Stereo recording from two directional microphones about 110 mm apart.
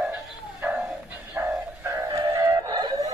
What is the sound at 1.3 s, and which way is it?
Music, 20° right (ahead or behind).